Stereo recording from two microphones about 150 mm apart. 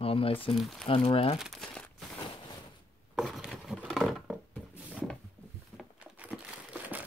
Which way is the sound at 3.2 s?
Centre (ahead or behind).